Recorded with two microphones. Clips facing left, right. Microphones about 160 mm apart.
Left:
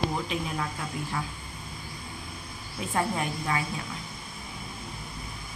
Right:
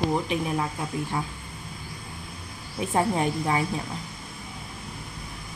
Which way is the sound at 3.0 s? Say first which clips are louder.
Right 5 dB; 25° right (ahead or behind).